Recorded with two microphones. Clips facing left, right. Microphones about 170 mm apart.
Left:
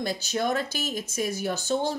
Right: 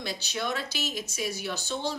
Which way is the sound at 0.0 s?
45° left (ahead or behind).